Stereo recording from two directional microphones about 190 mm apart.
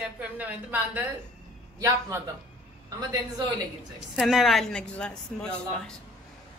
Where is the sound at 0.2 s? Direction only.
10° right (ahead or behind).